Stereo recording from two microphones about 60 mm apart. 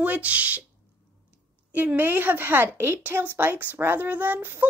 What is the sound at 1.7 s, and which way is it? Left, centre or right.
A woman's voice, right.